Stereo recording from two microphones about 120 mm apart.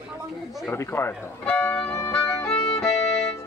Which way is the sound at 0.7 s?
20° left (ahead or behind).